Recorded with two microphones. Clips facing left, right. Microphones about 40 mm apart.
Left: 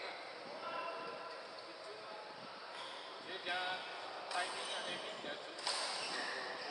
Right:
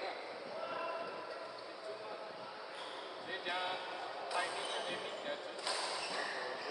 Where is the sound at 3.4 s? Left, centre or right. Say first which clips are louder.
Right 1 dB; centre.